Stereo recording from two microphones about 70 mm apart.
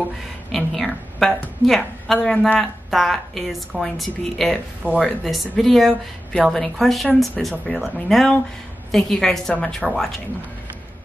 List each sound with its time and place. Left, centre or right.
0.5 s a woman's voice: centre